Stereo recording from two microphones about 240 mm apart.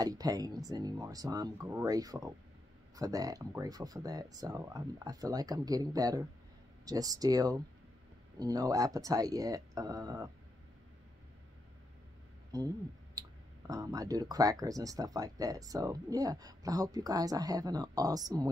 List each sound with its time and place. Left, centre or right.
0.0 s speech: centre
12.5 s speech: centre